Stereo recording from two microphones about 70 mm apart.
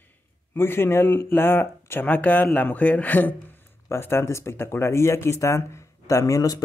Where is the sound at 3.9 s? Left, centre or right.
Left.